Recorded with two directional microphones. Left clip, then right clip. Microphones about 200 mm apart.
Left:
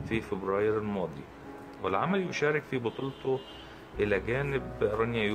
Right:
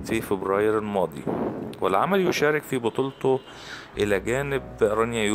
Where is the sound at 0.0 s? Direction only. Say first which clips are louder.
Right 7 dB; 50° right (ahead or behind).